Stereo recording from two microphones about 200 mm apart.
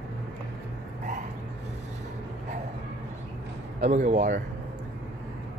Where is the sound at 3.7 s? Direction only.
35° right (ahead or behind).